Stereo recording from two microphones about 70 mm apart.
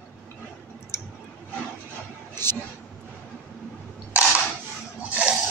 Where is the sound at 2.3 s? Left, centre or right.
Left.